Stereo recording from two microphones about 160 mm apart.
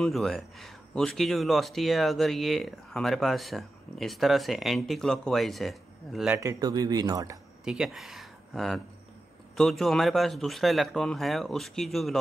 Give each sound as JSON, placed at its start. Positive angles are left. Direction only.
{"t": 0.0, "sound": "speech", "side_deg": 0}
{"t": 6.3, "sound": "speech", "side_deg": -20}
{"t": 7.6, "sound": "speech", "side_deg": -5}